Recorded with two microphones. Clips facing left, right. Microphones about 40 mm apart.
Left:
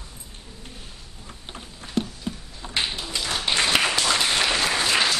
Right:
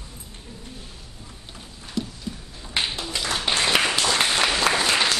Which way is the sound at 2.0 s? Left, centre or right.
Left.